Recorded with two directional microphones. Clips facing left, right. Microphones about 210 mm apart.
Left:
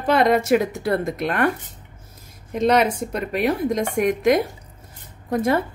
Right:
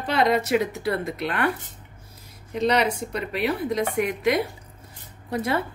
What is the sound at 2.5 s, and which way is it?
A woman's voice, 50° left (ahead or behind).